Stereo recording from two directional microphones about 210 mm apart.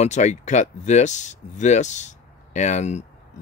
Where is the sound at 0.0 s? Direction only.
35° left (ahead or behind).